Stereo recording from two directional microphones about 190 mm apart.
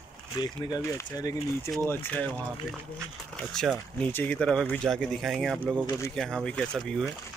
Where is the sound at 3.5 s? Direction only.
Centre (ahead or behind).